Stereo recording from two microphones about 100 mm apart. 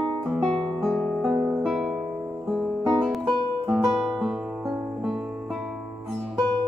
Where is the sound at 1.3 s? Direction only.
15° right (ahead or behind).